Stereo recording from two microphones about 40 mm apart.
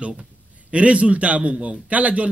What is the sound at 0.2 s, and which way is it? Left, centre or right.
A man's voice, right.